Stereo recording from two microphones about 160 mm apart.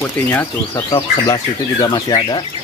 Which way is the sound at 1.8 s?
25° left (ahead or behind).